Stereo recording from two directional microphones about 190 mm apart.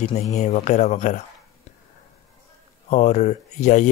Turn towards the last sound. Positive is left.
turn(degrees=40)  # may be behind; listen again after turning